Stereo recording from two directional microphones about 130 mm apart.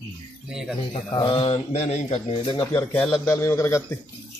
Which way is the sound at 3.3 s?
20° left (ahead or behind).